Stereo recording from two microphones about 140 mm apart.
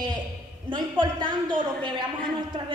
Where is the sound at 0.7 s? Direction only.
35° right (ahead or behind).